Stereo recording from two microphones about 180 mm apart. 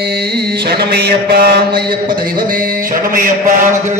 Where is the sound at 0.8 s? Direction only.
55° right (ahead or behind).